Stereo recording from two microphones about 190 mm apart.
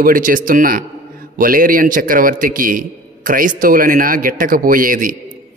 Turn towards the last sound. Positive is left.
turn(degrees=-45)  # may be behind; listen again after turning